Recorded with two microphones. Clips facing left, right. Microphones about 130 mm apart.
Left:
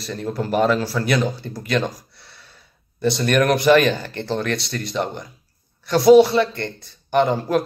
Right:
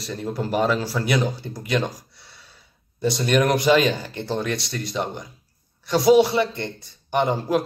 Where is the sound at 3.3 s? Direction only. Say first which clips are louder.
Left 3 dB; 10° right (ahead or behind).